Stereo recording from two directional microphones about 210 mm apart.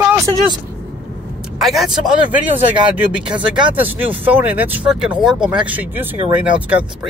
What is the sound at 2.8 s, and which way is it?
Speech, 20° right (ahead or behind).